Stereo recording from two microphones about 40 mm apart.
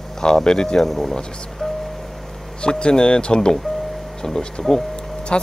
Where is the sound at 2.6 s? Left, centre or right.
Left.